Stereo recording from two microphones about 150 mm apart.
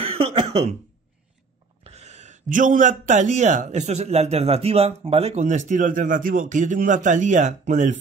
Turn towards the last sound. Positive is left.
turn(degrees=-55)  # may be behind; listen again after turning